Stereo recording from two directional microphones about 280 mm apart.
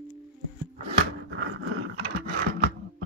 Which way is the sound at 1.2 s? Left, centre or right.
Right.